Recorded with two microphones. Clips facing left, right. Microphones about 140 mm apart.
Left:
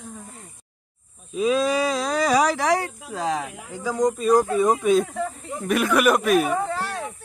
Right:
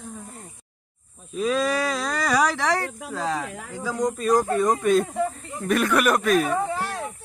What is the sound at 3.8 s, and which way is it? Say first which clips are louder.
Speech: left 3 dB; centre (ahead or behind).